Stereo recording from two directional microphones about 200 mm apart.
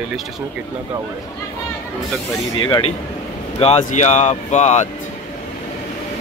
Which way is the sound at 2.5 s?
25° left (ahead or behind).